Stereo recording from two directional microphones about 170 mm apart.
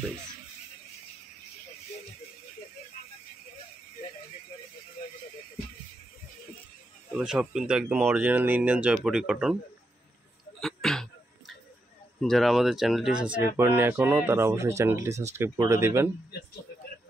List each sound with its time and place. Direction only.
7.1 s speech: 5° right (ahead or behind)
10.6 s a sound: 5° left (ahead or behind)
12.2 s speech: centre (ahead or behind); by 16.1 s 15° right (ahead or behind)